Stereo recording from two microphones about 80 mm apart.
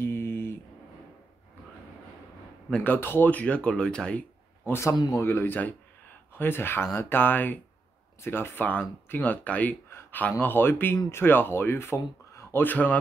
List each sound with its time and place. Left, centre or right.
0.0 s a sound: left
2.7 s speech: left
4.9 s speech: left
5.2 s speech: left
9.8 s a sound: left
10.4 s speech: left